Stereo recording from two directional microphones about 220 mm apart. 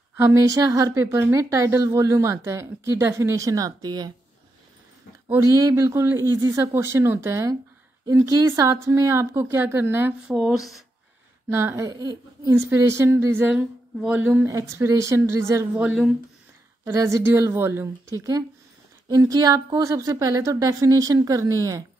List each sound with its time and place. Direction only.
0.2 s a woman's voice: 15° right (ahead or behind)
5.3 s a woman's voice: 15° right (ahead or behind)
11.5 s a woman's voice: 15° right (ahead or behind)